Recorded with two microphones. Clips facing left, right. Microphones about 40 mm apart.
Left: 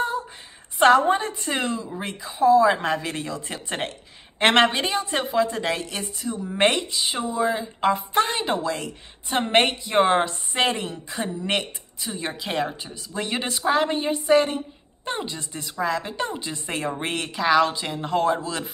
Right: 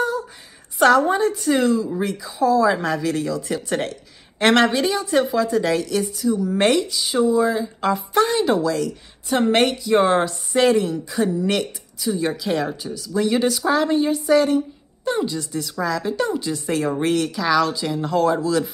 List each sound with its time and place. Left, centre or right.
0.7 s a woman's voice: left